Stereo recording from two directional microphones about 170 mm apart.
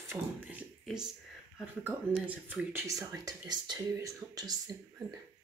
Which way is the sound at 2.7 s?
15° right (ahead or behind).